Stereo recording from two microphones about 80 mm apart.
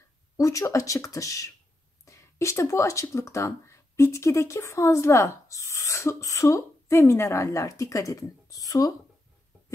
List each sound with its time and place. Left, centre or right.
0.4 s speech: left